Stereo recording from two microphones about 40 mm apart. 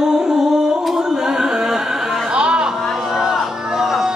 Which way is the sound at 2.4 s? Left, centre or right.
Right.